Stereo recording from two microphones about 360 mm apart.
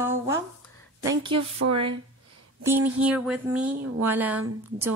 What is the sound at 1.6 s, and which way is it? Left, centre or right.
Speech, right.